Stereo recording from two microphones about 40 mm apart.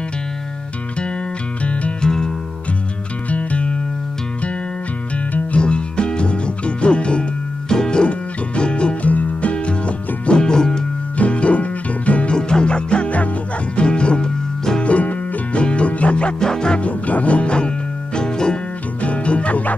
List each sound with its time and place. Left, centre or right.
1.6 s music: left
2.0 s music: centre
3.3 s music: left
5.6 s music: left
9.0 s music: left; by 10.8 s centre
11.1 s music: left
12.4 s music: left
14.8 s music: left
16.3 s music: centre
16.8 s music: left; by 18.6 s centre
18.9 s music: left